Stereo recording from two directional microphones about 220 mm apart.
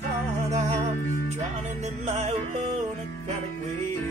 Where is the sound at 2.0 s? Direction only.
30° right (ahead or behind).